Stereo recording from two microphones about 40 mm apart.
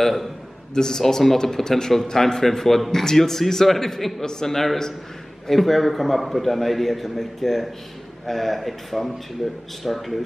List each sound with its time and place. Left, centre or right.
0.0 s a man's voice: centre
0.7 s a man's voice: centre